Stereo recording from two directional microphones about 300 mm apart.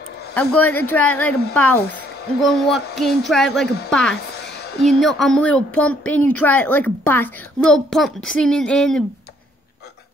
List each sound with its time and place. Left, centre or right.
0.3 s a woman's voice: centre
3.6 s speech: left
3.9 s a woman's voice: centre
4.4 s a sound: left
4.8 s a woman's voice: centre